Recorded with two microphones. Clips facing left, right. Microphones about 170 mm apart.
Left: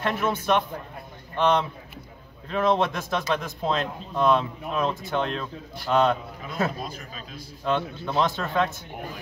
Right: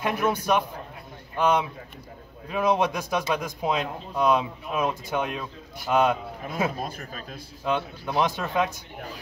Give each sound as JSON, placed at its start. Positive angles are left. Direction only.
{"t": 0.0, "sound": "a man's voice", "side_deg": -15}
{"t": 6.8, "sound": "speech", "side_deg": -50}
{"t": 7.6, "sound": "a man's voice", "side_deg": -10}